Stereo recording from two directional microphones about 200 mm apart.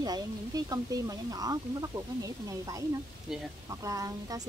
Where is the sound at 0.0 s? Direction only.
20° right (ahead or behind).